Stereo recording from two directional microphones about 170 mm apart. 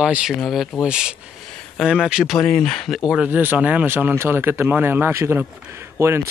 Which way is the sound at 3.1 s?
10° right (ahead or behind).